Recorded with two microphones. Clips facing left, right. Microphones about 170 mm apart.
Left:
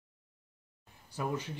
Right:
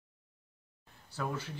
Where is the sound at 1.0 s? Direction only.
15° left (ahead or behind).